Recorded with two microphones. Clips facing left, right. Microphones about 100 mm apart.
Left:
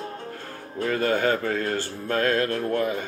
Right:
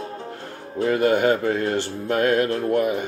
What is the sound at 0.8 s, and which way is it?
Speech, 20° right (ahead or behind).